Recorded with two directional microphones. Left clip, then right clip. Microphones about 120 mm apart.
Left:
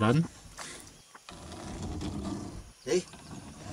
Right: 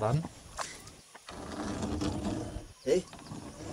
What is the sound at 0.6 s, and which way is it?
Mechanisms, 90° right.